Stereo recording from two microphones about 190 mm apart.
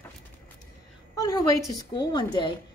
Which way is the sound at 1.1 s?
15° left (ahead or behind).